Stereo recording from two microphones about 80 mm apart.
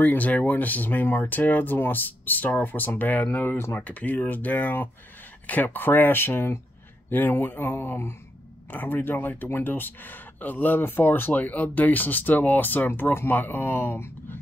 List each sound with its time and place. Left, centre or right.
0.0 s speech: left